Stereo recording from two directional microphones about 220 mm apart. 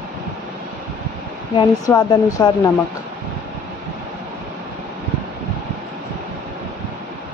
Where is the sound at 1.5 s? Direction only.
15° left (ahead or behind).